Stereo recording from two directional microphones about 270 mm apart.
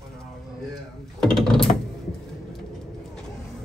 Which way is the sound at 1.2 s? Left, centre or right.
Centre.